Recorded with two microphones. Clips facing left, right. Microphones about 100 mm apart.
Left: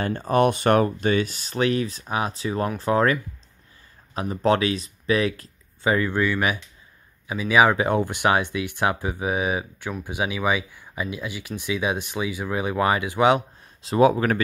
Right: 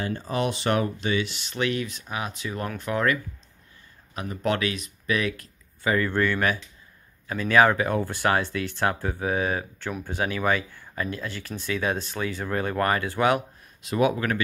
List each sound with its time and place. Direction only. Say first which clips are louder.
0.0 s speech: left 7 dB; 55° left (ahead or behind); by 5.5 s 30° left (ahead or behind)
5.9 s speech: left 2 dB; 15° left (ahead or behind)
13.8 s speech: left 5 dB; 30° left (ahead or behind)